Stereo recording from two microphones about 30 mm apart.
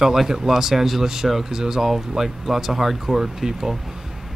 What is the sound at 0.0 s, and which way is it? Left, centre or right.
Speech, centre.